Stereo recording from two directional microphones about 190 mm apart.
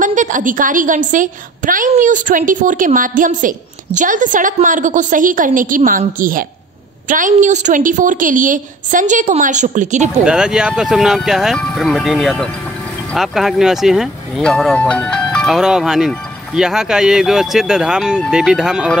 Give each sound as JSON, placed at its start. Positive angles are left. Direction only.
{"t": 0.0, "sound": "a woman's voice", "side_deg": -40}
{"t": 10.2, "sound": "speech", "side_deg": -5}